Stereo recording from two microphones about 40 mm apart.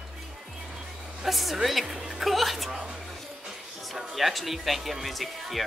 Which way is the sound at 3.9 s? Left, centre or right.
Centre.